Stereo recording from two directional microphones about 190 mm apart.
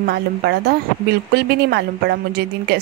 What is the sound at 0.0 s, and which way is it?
Speech, 60° right (ahead or behind).